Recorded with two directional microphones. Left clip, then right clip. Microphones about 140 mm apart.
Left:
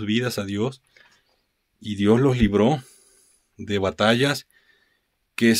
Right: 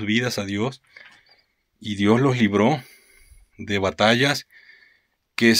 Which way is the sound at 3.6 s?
25° left (ahead or behind).